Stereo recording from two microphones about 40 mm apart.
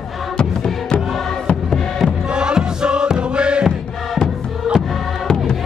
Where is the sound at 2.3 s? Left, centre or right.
Right.